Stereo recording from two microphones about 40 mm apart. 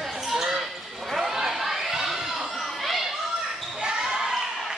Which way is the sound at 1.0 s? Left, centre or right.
Centre.